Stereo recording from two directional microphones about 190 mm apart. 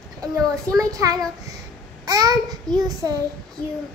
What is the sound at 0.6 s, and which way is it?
A child's voice, 15° right (ahead or behind).